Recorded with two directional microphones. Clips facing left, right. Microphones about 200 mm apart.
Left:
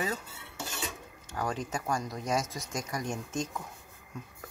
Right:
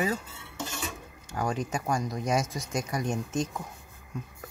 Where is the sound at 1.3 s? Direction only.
15° right (ahead or behind).